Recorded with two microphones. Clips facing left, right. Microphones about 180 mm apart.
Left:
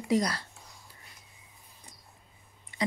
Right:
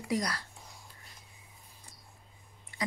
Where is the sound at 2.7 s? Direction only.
20° left (ahead or behind).